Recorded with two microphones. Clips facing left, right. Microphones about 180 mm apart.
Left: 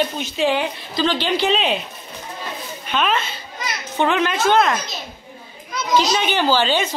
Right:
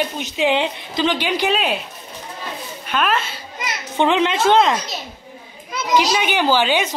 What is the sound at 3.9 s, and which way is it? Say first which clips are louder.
Speech: right 2 dB; 25° right (ahead or behind).